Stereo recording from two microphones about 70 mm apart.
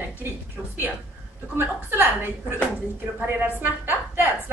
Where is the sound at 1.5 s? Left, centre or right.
Right.